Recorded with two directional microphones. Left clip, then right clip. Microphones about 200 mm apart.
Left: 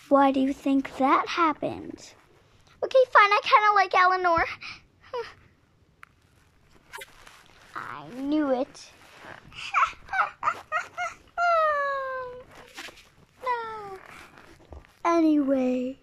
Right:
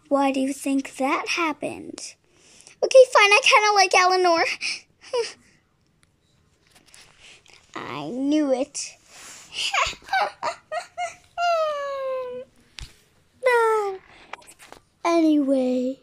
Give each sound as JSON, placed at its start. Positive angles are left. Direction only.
{"t": 0.1, "sound": "speech", "side_deg": -5}
{"t": 7.7, "sound": "speech", "side_deg": -20}
{"t": 8.3, "sound": "speech", "side_deg": 0}
{"t": 9.8, "sound": "a sound", "side_deg": -25}
{"t": 11.3, "sound": "cat", "side_deg": -10}
{"t": 13.4, "sound": "a sound", "side_deg": -40}
{"t": 15.0, "sound": "speech", "side_deg": -10}